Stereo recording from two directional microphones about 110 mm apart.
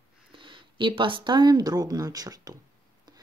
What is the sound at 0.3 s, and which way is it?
Speech, 50° right (ahead or behind).